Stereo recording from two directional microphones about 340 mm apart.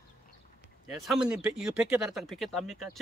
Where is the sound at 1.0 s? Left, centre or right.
Centre.